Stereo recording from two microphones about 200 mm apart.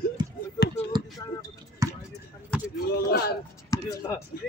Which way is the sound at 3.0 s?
50° left (ahead or behind).